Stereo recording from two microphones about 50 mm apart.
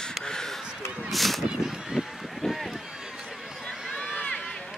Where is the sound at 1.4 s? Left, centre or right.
Centre.